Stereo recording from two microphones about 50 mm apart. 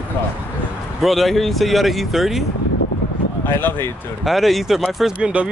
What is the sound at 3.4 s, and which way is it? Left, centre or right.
Speech, left.